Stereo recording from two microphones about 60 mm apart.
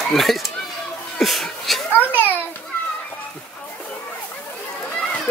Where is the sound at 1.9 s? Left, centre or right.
Left.